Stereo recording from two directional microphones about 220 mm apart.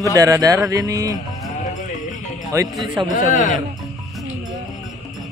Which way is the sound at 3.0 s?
35° left (ahead or behind).